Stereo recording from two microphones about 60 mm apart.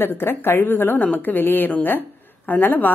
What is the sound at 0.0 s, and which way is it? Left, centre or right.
A woman's voice, left.